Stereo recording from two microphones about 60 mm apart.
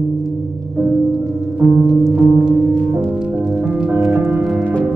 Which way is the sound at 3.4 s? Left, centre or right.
Centre.